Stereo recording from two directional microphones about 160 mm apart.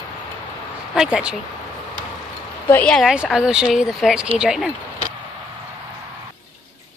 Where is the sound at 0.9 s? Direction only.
5° right (ahead or behind).